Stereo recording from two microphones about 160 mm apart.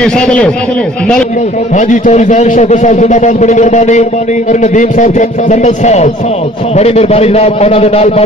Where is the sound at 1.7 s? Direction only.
50° left (ahead or behind).